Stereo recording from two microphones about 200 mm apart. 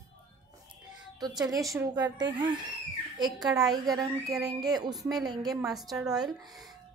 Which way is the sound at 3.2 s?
20° right (ahead or behind).